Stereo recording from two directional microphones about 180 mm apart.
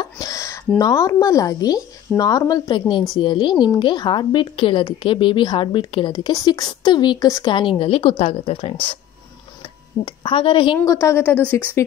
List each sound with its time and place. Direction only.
0.0 s a sound: 20° left (ahead or behind)
0.7 s a woman's voice: 20° left (ahead or behind)
10.0 s a woman's voice: 25° left (ahead or behind)
10.8 s a woman's voice: 15° left (ahead or behind)